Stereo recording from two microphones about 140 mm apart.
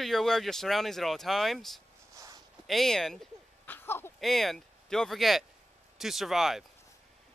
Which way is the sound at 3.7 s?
15° left (ahead or behind).